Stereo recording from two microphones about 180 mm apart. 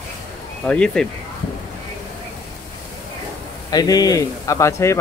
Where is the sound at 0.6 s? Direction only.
5° left (ahead or behind).